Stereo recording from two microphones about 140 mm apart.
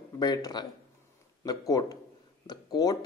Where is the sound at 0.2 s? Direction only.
30° left (ahead or behind).